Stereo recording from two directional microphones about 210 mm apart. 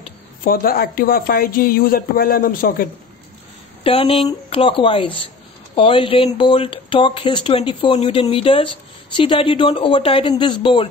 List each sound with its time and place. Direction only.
0.4 s speech: 45° left (ahead or behind)
3.8 s speech: 25° left (ahead or behind)